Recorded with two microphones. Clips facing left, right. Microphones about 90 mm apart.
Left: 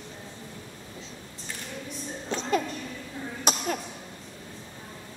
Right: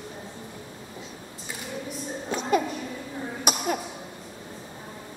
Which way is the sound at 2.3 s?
10° right (ahead or behind).